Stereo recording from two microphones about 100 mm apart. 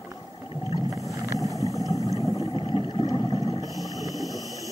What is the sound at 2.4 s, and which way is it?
Vehicle, 65° left (ahead or behind).